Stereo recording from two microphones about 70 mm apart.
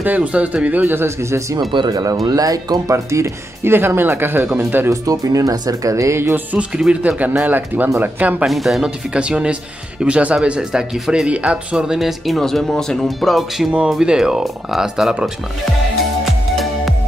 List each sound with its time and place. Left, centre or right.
0.0 s speech: right
1.8 s speech: right
2.2 s speech: right
3.1 s speech: right
4.8 s speech: right
6.9 s speech: centre
8.5 s speech: centre
9.1 s speech: centre